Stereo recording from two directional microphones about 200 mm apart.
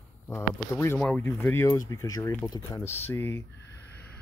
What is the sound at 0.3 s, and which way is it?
Speech, 15° left (ahead or behind).